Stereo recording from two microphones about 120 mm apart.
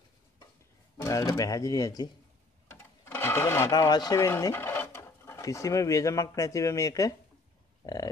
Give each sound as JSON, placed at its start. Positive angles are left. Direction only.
{"t": 1.0, "sound": "speech", "side_deg": 25}
{"t": 2.7, "sound": "sewing machine", "side_deg": 20}
{"t": 3.7, "sound": "speech", "side_deg": 35}
{"t": 7.8, "sound": "livestock", "side_deg": 30}